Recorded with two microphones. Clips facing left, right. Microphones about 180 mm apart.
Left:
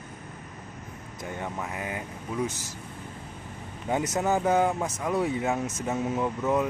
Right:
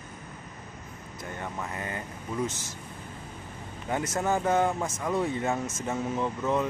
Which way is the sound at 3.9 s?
15° left (ahead or behind).